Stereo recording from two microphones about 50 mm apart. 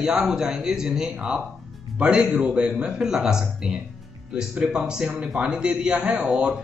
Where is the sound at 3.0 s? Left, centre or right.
Centre.